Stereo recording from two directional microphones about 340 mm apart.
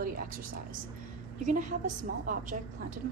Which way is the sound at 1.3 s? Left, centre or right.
Right.